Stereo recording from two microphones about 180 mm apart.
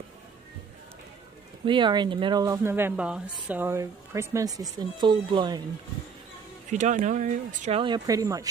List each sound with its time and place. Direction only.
1.7 s speech: 25° right (ahead or behind)
2.4 s a woman's voice: 15° right (ahead or behind)
6.7 s speech: 40° right (ahead or behind)
7.8 s speech: 20° right (ahead or behind)